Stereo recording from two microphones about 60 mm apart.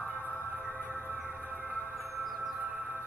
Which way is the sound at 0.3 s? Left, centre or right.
Left.